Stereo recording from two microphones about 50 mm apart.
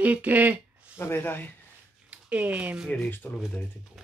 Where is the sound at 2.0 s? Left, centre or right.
Right.